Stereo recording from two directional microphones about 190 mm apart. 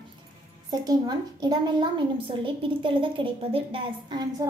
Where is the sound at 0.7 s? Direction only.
20° right (ahead or behind).